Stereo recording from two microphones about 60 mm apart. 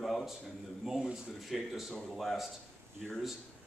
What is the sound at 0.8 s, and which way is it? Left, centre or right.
A man's voice, centre.